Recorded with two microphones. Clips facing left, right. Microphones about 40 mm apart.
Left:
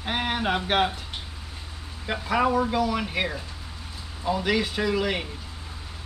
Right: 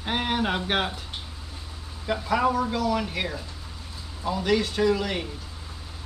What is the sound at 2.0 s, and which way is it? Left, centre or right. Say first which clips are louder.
Speech: even; centre.